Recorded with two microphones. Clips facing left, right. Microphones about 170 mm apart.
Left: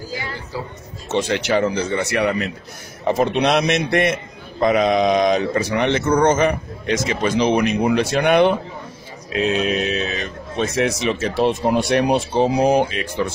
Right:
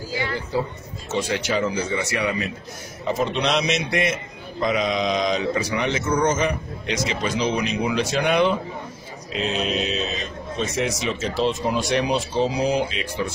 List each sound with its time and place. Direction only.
1.1 s speech: 65° left (ahead or behind)
9.7 s speech: 60° left (ahead or behind)